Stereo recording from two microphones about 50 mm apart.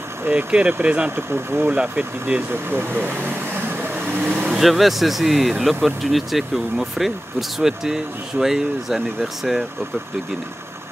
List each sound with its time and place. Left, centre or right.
0.5 s speech: right
1.1 s speech: right
1.7 s speech: right
2.5 s speech: right
4.0 s vehicle: right
4.6 s speech: centre